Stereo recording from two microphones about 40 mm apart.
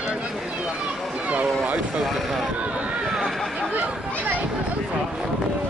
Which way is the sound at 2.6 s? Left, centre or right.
Right.